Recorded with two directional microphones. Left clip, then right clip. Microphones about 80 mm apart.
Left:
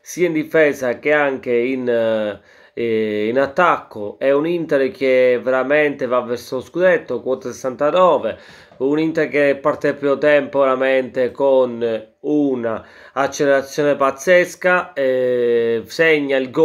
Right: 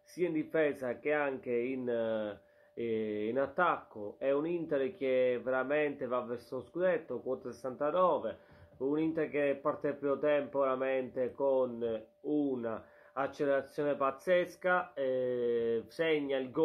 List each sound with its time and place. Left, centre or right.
0.2 s speech: centre
2.0 s speech: left
7.8 s speech: left
8.1 s speech: left
9.0 s speech: centre